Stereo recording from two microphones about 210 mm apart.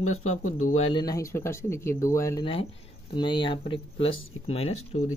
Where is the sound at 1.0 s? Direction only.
15° left (ahead or behind).